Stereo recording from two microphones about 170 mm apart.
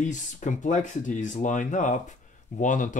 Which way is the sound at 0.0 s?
45° left (ahead or behind).